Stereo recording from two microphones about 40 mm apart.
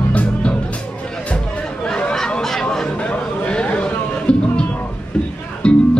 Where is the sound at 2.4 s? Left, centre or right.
Centre.